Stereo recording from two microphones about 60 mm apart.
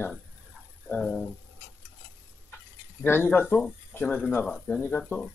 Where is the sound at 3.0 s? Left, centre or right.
Left.